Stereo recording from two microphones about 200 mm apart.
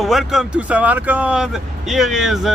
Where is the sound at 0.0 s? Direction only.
Centre (ahead or behind).